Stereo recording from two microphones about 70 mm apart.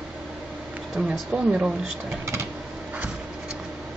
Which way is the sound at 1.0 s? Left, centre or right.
Centre.